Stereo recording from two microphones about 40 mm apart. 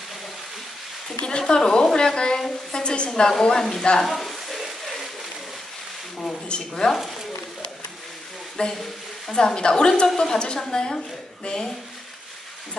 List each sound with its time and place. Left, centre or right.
1.0 s a sound: left
1.5 s a woman's voice: centre
4.0 s a sound: centre
6.1 s mouse: centre
6.5 s a woman's voice: centre
8.6 s a woman's voice: left